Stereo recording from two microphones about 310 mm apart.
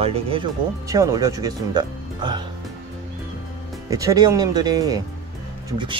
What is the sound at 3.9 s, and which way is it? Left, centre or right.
Speech, centre.